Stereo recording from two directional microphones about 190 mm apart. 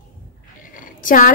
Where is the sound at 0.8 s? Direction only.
45° left (ahead or behind).